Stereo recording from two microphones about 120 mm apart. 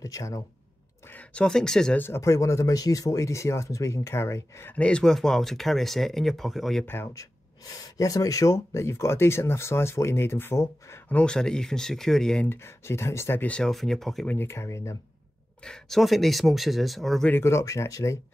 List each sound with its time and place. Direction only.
0.0 s speech: 30° left (ahead or behind)
1.0 s speech: 15° left (ahead or behind)
2.0 s speech: 20° left (ahead or behind); by 6.9 s centre (ahead or behind)
6.9 s speech: 20° left (ahead or behind)
7.6 s speech: 30° left (ahead or behind)
11.1 s speech: 5° left (ahead or behind)
12.4 s speech: 20° left (ahead or behind); by 14.2 s centre (ahead or behind)
14.2 s speech: 15° left (ahead or behind)
15.6 s speech: 5° left (ahead or behind)
17.3 s speech: 20° left (ahead or behind)